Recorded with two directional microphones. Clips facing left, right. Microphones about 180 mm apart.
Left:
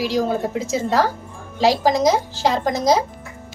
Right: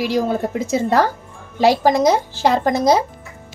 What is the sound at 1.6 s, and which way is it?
A woman's voice, 55° right (ahead or behind).